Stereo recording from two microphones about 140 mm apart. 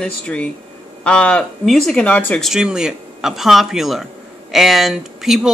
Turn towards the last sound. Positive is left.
turn(degrees=-5)  # may be behind; listen again after turning